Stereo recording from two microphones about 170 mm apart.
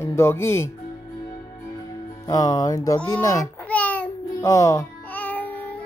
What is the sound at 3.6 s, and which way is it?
Music, 10° left (ahead or behind).